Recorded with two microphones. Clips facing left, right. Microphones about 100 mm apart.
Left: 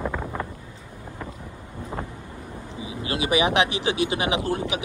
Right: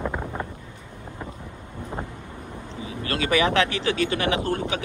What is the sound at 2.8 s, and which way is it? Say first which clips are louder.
Speech: even; 15° left (ahead or behind).